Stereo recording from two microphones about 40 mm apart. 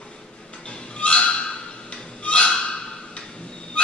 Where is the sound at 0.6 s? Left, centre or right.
Left.